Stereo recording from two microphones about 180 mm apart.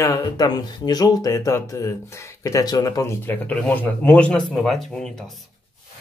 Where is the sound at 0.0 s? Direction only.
20° left (ahead or behind); by 5.4 s 5° left (ahead or behind).